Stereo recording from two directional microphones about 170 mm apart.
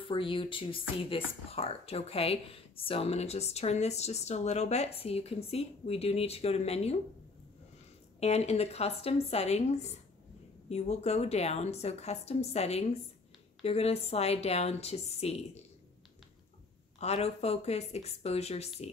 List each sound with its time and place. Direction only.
0.0 s speech: 30° left (ahead or behind)
8.2 s speech: 40° left (ahead or behind)
17.0 s speech: 40° left (ahead or behind)